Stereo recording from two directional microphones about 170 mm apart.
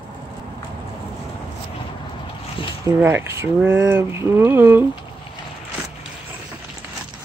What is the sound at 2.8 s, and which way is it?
Speech, 15° right (ahead or behind).